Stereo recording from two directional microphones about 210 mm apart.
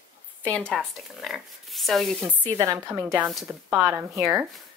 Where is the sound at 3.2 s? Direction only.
Centre (ahead or behind).